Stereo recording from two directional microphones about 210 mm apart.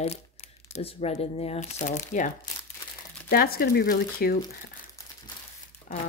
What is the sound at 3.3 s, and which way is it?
Speech, 45° left (ahead or behind).